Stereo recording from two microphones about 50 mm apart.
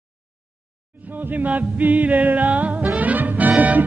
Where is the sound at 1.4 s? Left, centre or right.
Right.